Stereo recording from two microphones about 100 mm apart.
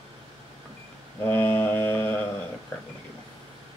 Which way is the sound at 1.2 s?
15° left (ahead or behind).